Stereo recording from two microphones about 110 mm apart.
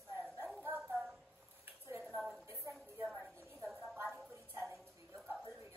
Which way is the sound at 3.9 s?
20° right (ahead or behind).